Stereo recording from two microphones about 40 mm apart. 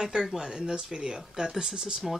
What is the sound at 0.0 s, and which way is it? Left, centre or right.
Speech, centre.